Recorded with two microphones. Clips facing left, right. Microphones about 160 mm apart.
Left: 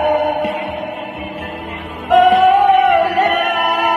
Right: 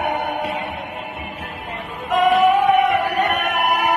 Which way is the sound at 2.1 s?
75° left (ahead or behind).